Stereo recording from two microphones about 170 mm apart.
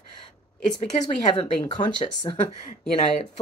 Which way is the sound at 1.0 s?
30° left (ahead or behind).